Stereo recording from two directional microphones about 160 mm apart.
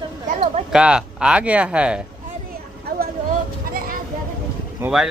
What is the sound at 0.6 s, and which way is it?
Speech, 5° right (ahead or behind).